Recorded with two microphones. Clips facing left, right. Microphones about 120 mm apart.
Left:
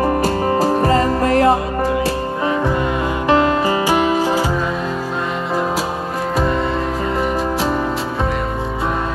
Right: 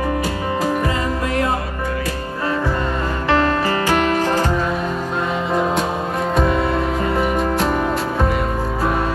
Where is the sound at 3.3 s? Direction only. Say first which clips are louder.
Left 2 dB; 15° left (ahead or behind).